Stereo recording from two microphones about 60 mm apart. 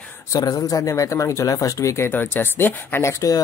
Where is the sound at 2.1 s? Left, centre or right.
Left.